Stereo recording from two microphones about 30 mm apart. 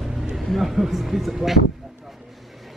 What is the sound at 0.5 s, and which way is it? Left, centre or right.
Speech, centre.